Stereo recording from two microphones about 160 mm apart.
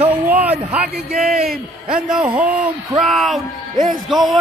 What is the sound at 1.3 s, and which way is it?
Speech, 65° right (ahead or behind).